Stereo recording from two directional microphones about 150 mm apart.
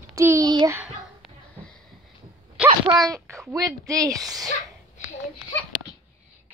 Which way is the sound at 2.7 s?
30° right (ahead or behind).